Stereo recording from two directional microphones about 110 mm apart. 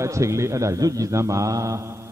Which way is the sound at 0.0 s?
25° right (ahead or behind).